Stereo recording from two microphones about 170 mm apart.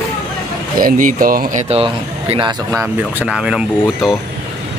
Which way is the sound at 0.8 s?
55° right (ahead or behind).